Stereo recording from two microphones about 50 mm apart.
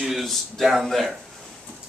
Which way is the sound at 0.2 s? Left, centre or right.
Centre.